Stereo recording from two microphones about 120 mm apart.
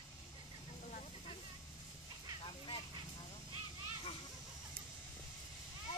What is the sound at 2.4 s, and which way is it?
Honk, 45° left (ahead or behind).